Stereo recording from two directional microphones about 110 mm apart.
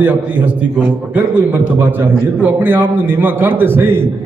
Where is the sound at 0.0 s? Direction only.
15° right (ahead or behind).